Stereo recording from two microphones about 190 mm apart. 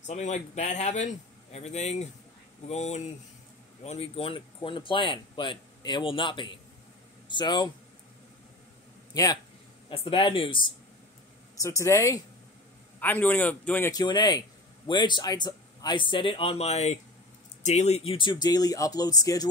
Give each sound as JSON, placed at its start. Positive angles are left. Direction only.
{"t": 0.0, "sound": "speech", "side_deg": 40}
{"t": 9.1, "sound": "speech", "side_deg": 20}
{"t": 11.6, "sound": "a man's voice", "side_deg": 15}